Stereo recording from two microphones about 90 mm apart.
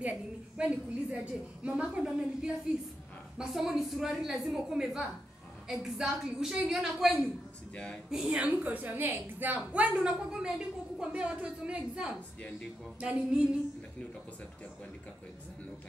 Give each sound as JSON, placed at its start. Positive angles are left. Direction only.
{"t": 0.0, "sound": "a woman's voice", "side_deg": -15}
{"t": 7.7, "sound": "speech", "side_deg": 15}
{"t": 8.1, "sound": "a woman's voice", "side_deg": -5}
{"t": 8.4, "sound": "a woman's voice", "side_deg": -15}
{"t": 12.4, "sound": "speech", "side_deg": 15}
{"t": 13.0, "sound": "a woman's voice", "side_deg": -15}